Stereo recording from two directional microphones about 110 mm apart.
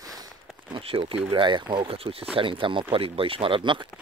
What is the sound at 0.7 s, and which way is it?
Speech, 55° right (ahead or behind).